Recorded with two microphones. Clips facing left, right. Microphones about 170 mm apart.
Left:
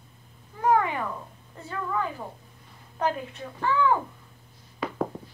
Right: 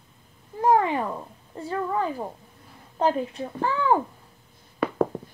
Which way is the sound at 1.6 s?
30° right (ahead or behind).